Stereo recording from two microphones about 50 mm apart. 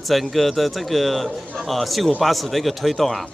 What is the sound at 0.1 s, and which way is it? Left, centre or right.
Speech, centre.